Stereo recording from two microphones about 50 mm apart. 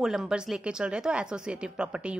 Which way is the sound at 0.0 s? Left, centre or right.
Centre.